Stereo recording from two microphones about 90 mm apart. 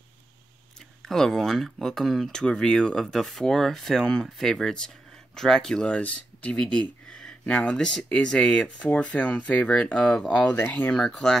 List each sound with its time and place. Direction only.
1.0 s speech: 5° left (ahead or behind)